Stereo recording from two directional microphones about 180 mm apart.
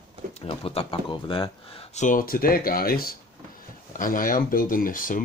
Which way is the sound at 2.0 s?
50° left (ahead or behind).